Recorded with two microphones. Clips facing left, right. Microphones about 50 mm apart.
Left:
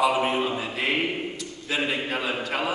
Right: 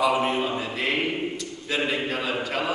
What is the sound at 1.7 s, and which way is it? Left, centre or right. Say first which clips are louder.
Speech: right 1 dB; centre.